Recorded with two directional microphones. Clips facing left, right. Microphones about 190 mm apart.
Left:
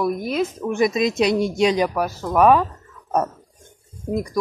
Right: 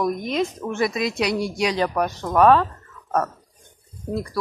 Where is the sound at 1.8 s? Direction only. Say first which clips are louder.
Left 1 dB; 5° left (ahead or behind).